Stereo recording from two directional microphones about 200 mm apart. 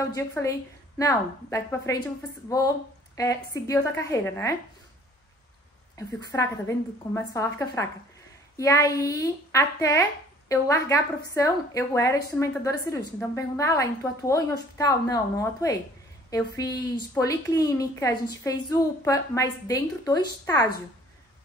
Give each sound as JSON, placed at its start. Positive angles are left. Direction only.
{"t": 0.1, "sound": "a woman's voice", "side_deg": 15}
{"t": 3.2, "sound": "a woman's voice", "side_deg": 15}
{"t": 6.3, "sound": "a woman's voice", "side_deg": 10}